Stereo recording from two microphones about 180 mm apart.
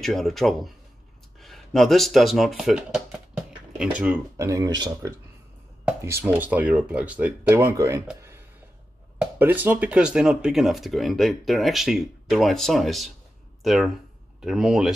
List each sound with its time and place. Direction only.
0.0 s speech: centre (ahead or behind)
4.4 s speech: 20° right (ahead or behind)
9.2 s speech: 10° right (ahead or behind)